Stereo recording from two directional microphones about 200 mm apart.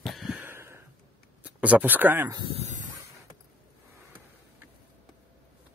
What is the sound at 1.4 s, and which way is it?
Speech, 5° right (ahead or behind).